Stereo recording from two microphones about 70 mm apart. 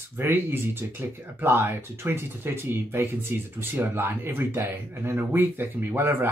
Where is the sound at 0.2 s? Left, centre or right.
Right.